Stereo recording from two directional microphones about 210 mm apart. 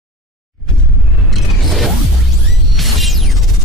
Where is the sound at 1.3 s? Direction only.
Centre (ahead or behind).